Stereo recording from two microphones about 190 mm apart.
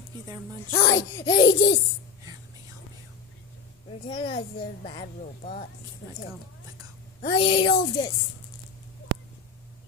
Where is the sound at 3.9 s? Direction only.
30° left (ahead or behind).